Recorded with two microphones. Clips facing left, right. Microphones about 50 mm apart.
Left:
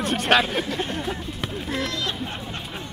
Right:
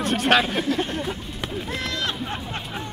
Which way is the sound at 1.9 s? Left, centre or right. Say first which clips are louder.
Right 1 dB; right.